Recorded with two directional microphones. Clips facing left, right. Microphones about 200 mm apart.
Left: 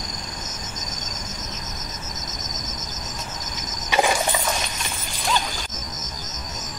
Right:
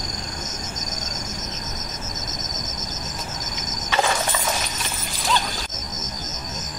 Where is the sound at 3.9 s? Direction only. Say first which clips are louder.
Left 2 dB; 15° left (ahead or behind).